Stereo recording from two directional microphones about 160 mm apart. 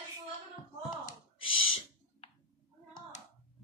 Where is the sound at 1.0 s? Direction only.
35° left (ahead or behind).